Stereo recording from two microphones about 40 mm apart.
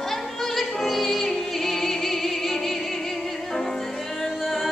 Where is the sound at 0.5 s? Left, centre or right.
Centre.